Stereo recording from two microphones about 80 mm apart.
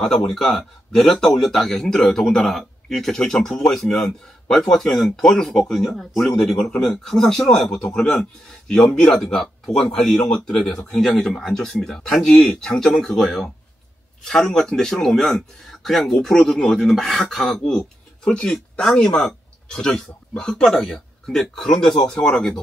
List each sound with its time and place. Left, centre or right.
0.3 s speech: centre